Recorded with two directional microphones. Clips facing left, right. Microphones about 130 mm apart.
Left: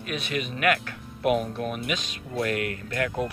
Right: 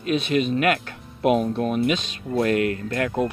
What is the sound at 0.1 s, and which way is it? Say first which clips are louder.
Speech: right 10 dB; 25° right (ahead or behind).